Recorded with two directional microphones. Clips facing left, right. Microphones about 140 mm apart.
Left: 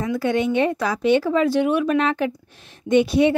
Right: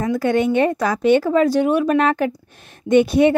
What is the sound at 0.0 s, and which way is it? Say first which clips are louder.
A woman's voice: right 3 dB; 50° right (ahead or behind).